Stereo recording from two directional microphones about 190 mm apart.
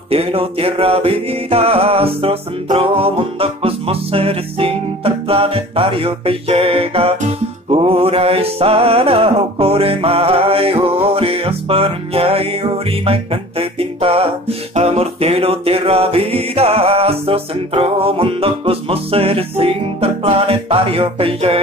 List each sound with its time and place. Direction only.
0.1 s music: 30° right (ahead or behind)